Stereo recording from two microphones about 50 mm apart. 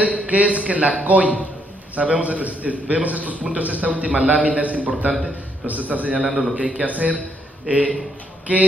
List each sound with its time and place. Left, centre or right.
0.3 s a man's voice: right
6.2 s a man's voice: centre
6.5 s a man's voice: right